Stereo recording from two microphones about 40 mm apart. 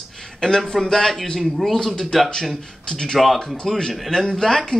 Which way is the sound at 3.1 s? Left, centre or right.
Centre.